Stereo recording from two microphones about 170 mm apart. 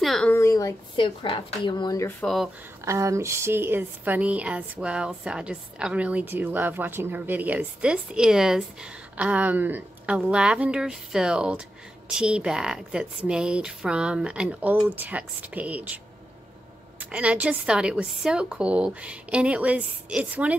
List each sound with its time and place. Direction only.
0.0 s a woman's voice: centre (ahead or behind)
0.3 s speech: 15° left (ahead or behind)
0.9 s speech: 30° left (ahead or behind)
2.2 s speech: centre (ahead or behind)
2.8 s speech: 15° right (ahead or behind)
17.0 s speech: 5° right (ahead or behind)